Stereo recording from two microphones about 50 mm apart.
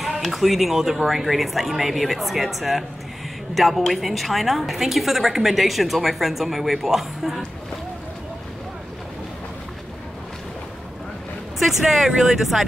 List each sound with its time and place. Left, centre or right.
0.2 s a woman's voice: centre
12.0 s a woman's voice: centre